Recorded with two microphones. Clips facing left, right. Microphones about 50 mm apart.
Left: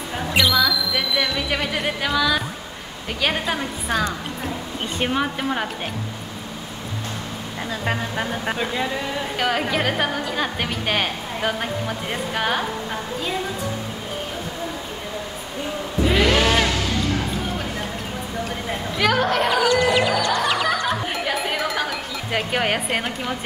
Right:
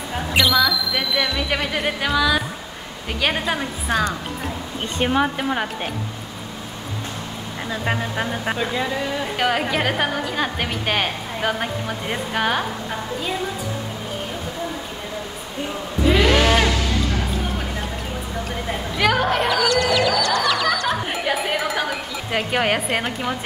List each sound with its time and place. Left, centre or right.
0.5 s a woman's voice: centre
5.1 s a woman's voice: centre
7.7 s a woman's voice: centre
16.2 s bleat: centre
18.9 s a woman's voice: centre
19.5 s music: centre
20.9 s chatter: centre
22.3 s a woman's voice: centre